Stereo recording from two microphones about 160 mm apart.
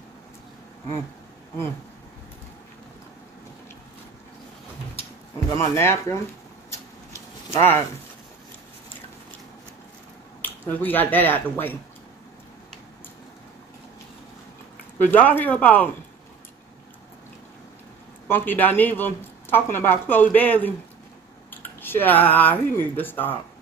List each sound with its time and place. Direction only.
5.6 s speech: 15° left (ahead or behind)
6.7 s a sound: 20° left (ahead or behind)
10.4 s speech: 10° left (ahead or behind)
15.0 s speech: 10° left (ahead or behind)
18.3 s speech: 10° left (ahead or behind)